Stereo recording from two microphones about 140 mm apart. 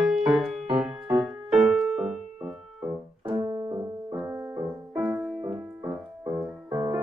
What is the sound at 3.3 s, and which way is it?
Music, 25° right (ahead or behind).